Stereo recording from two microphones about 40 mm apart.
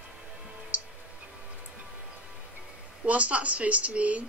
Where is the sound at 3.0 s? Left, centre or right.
Right.